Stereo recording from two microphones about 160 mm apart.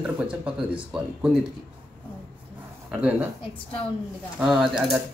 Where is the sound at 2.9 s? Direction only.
10° right (ahead or behind).